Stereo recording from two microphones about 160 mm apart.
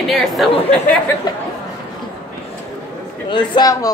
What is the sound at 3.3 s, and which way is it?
Speech, 30° left (ahead or behind).